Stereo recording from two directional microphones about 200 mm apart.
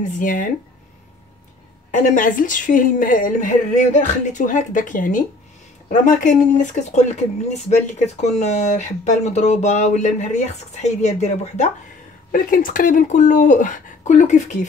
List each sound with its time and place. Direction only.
0.2 s speech: 40° left (ahead or behind)
1.9 s speech: 40° left (ahead or behind)